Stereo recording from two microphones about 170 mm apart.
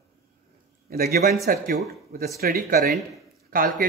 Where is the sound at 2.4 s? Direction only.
65° right (ahead or behind).